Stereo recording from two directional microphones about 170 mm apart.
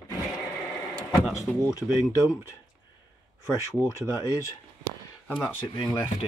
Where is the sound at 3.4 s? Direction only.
20° left (ahead or behind).